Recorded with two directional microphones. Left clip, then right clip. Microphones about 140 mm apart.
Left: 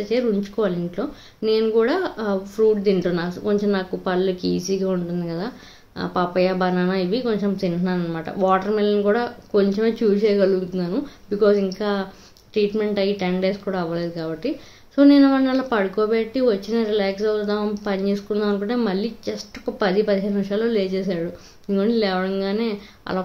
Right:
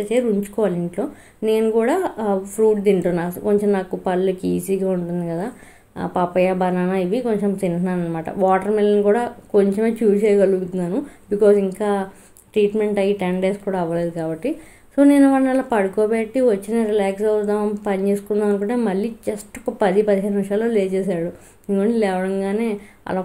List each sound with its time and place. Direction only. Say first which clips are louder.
0.1 s speech: right 1 dB; 15° right (ahead or behind)
4.4 s speech: right 1 dB; 50° right (ahead or behind)
4.7 s speech: right 2 dB; 5° right (ahead or behind)